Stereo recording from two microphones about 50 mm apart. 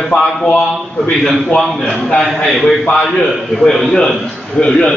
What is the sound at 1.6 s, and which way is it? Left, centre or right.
A man's voice, centre.